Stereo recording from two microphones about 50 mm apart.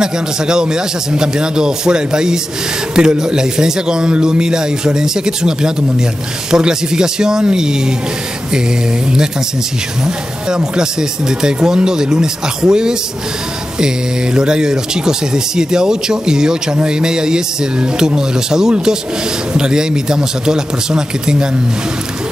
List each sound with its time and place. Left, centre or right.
0.0 s speech: centre
10.0 s speech: centre